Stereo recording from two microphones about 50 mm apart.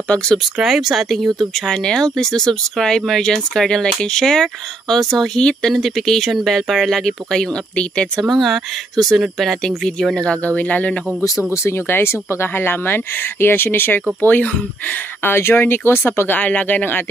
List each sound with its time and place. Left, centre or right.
0.1 s speech: centre
0.6 s speech: centre
1.8 s speech: centre
7.7 s speech: left
8.2 s speech: centre
10.1 s speech: left
11.9 s speech: left
14.9 s speech: left